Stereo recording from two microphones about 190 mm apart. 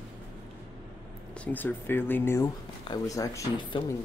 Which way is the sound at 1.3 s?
10° left (ahead or behind).